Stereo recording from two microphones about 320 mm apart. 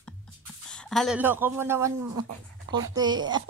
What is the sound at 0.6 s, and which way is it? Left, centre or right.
Speech, centre.